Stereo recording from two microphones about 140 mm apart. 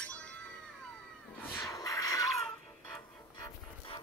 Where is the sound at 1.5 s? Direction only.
25° left (ahead or behind).